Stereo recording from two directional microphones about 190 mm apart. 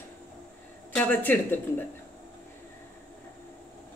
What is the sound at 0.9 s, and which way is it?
Speech, 10° left (ahead or behind).